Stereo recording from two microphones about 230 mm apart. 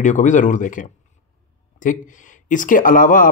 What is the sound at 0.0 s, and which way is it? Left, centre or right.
Speech, left.